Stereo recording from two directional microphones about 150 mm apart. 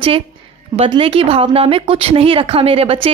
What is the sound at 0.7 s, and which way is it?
A woman's voice, 35° right (ahead or behind).